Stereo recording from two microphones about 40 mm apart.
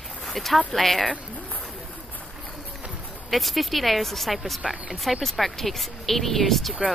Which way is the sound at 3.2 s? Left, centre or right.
Centre.